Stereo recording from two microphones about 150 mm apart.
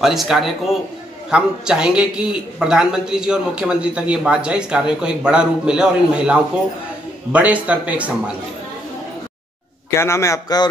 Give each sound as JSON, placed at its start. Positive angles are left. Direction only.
{"t": 0.0, "sound": "a man's voice", "side_deg": 0}
{"t": 9.8, "sound": "a man's voice", "side_deg": 20}